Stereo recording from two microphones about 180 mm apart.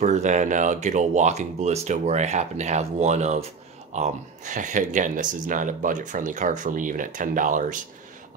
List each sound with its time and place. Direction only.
0.0 s speech: 40° right (ahead or behind)